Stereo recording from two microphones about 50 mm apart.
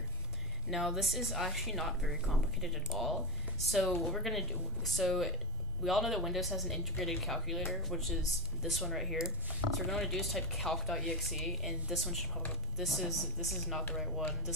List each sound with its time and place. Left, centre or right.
0.7 s speech: centre